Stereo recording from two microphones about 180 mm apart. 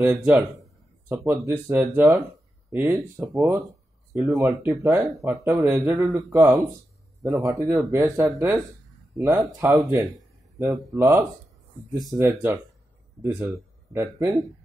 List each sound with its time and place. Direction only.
0.0 s speech: 10° right (ahead or behind)
4.3 s speech: 5° right (ahead or behind)
4.6 s speech: 15° right (ahead or behind)